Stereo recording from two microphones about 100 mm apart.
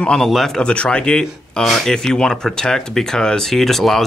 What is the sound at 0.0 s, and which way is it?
A man's voice, 5° left (ahead or behind).